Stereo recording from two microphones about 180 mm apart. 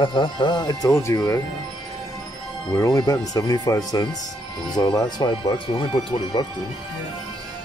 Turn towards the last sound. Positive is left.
turn(degrees=25)  # may be behind; listen again after turning